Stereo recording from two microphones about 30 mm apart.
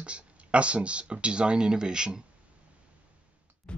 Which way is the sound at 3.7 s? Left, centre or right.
Left.